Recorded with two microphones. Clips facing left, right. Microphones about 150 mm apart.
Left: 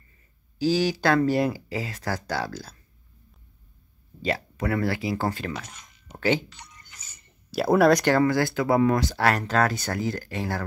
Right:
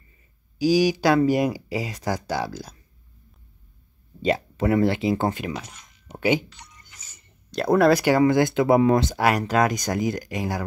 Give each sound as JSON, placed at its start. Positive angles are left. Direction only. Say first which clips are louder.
{"t": 0.6, "sound": "speech", "louder": "right 4 dB", "side_deg": -10}
{"t": 4.2, "sound": "speech", "louder": "right 5 dB", "side_deg": -20}
{"t": 7.5, "sound": "speech", "louder": "right 1 dB", "side_deg": 5}
{"t": 8.0, "sound": "speech", "louder": "right 3 dB", "side_deg": -10}
{"t": 9.2, "sound": "speech", "louder": "right 2 dB", "side_deg": -10}